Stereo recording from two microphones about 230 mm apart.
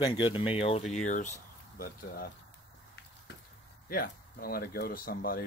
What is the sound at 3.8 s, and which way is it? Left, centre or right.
Speech, left.